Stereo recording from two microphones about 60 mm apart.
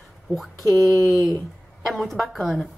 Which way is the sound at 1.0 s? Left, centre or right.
Right.